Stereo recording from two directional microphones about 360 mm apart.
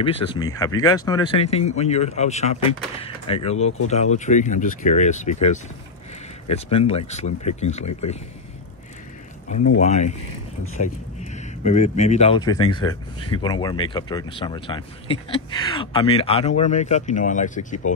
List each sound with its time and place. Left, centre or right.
0.0 s speech: centre
3.5 s speech: left
3.9 s speech: centre
9.8 s speech: centre
11.3 s speech: centre